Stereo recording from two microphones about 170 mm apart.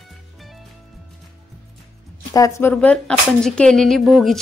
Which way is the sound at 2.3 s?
15° left (ahead or behind).